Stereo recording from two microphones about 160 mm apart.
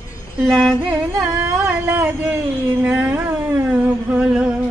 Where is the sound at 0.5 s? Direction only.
Centre (ahead or behind).